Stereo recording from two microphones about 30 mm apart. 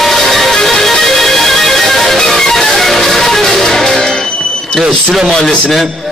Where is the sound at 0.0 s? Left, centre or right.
Centre.